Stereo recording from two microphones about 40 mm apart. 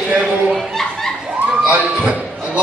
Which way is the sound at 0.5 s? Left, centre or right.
Centre.